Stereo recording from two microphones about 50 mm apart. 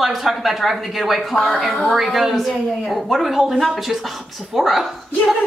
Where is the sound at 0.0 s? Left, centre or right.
Centre.